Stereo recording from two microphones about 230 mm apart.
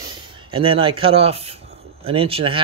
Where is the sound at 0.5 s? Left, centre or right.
Right.